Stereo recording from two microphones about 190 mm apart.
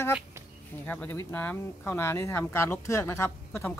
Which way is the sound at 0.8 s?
10° left (ahead or behind).